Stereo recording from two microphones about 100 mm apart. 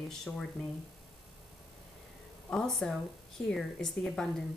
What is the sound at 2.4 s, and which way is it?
Speech, 5° left (ahead or behind).